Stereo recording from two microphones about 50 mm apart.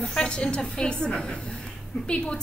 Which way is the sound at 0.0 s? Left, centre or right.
Centre.